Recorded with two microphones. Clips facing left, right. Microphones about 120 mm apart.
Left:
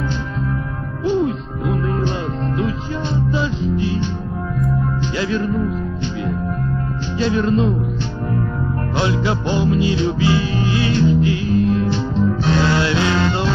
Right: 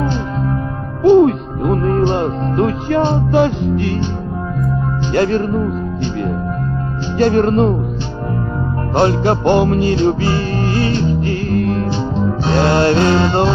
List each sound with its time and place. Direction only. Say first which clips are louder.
1.0 s music: right 10 dB; 55° right (ahead or behind)
5.1 s music: right 9 dB; 50° right (ahead or behind)
7.2 s music: right 5 dB; 50° right (ahead or behind)
8.9 s music: right 7 dB; 45° right (ahead or behind)
11.9 s music: right 1 dB; 30° right (ahead or behind)
12.5 s music: right 9 dB; 50° right (ahead or behind)